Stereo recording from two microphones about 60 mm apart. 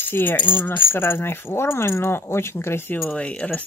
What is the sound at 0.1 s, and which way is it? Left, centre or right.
Speech, left.